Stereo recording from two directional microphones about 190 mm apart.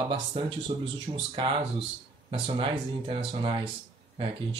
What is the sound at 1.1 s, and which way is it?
Speech, 25° right (ahead or behind).